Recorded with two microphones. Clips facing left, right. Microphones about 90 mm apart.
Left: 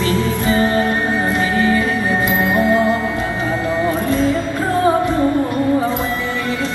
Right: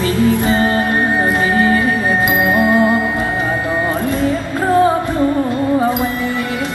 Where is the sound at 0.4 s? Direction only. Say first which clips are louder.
Right 1 dB; 20° right (ahead or behind).